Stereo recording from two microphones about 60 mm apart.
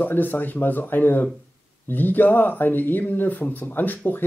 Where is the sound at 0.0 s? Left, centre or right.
Left.